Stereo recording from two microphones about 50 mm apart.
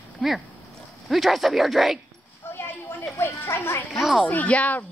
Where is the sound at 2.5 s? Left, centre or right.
Left.